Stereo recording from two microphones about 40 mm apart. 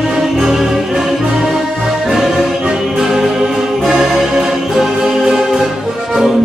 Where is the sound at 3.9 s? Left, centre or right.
Centre.